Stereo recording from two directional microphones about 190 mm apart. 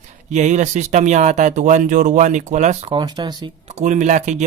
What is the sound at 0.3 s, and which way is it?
Speech, 40° right (ahead or behind).